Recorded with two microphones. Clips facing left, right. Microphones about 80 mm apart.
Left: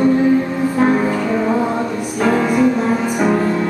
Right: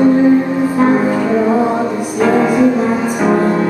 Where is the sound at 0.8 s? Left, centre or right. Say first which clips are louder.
Right 2 dB; centre.